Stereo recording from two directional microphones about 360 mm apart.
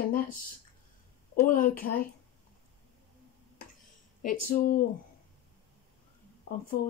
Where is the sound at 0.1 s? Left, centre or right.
Left.